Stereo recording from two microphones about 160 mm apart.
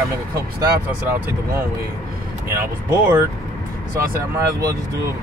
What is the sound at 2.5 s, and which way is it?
Speech, 15° right (ahead or behind).